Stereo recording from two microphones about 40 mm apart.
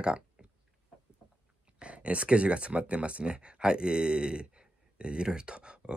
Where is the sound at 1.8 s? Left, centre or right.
Right.